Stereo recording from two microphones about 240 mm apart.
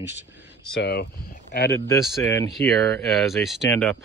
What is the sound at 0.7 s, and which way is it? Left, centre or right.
Speech, left.